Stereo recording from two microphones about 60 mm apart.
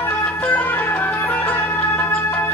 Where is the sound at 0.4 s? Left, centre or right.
Left.